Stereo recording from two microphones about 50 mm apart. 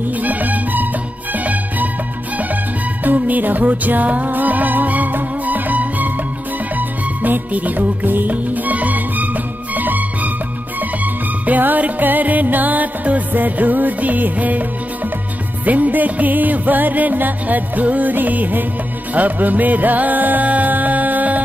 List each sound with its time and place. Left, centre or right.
0.2 s music: right
3.0 s music: right
7.2 s music: right
11.4 s music: right
15.6 s music: right